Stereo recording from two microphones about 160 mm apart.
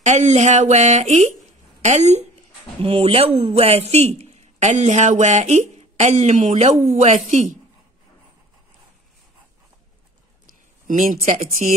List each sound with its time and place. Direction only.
0.0 s a woman's voice: 45° right (ahead or behind)
10.4 s a sound: 60° right (ahead or behind)
11.6 s speech: 50° right (ahead or behind)